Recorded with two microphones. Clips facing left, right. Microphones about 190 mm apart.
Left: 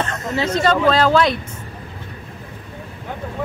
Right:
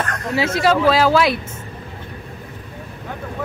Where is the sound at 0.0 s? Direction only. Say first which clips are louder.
Even; 25° left (ahead or behind).